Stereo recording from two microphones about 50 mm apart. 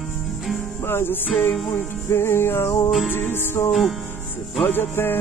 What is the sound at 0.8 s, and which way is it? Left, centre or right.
Music, left.